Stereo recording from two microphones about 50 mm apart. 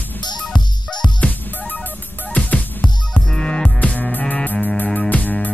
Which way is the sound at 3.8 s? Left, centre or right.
Left.